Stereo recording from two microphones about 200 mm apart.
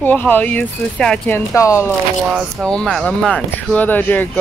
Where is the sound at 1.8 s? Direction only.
Centre (ahead or behind).